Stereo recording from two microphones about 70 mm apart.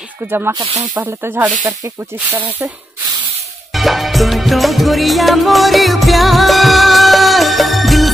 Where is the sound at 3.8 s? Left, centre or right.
Centre.